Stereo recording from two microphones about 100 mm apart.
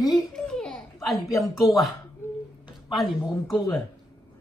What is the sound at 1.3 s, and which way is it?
Speech, 30° left (ahead or behind).